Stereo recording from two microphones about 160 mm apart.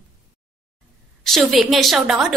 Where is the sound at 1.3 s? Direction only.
Centre (ahead or behind).